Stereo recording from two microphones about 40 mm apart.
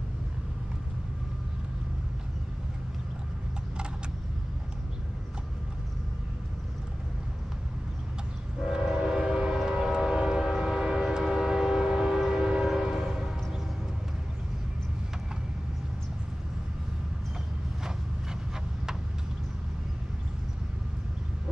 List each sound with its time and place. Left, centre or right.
8.6 s train: centre
12.6 s train horn: centre